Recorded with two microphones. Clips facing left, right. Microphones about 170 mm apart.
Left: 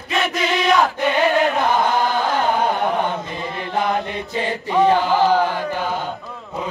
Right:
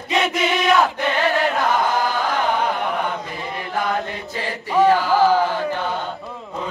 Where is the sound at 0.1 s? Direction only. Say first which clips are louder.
Right 1 dB; 10° right (ahead or behind).